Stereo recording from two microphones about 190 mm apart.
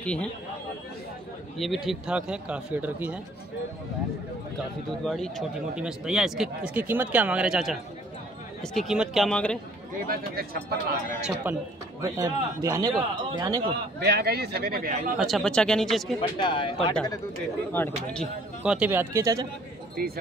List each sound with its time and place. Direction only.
0.0 s speech: 5° left (ahead or behind)
1.6 s speech: centre (ahead or behind)
5.0 s speech: centre (ahead or behind)
10.0 s speech: 50° right (ahead or behind)
11.4 s a man's voice: 10° right (ahead or behind)
14.0 s speech: 60° right (ahead or behind)
15.1 s speech: centre (ahead or behind)
16.2 s speech: 25° left (ahead or behind)
17.7 s speech: 10° left (ahead or behind); by 19.4 s 15° right (ahead or behind)
20.0 s speech: 50° right (ahead or behind)